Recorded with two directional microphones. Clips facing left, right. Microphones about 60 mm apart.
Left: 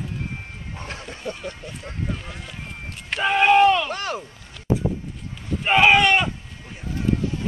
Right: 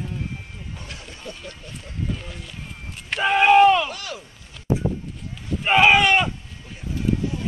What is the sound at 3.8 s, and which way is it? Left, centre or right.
Speech, left.